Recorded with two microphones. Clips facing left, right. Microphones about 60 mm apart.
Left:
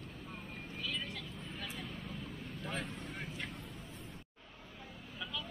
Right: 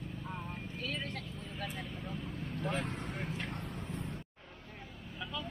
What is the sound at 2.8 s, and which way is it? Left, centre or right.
Vehicle, right.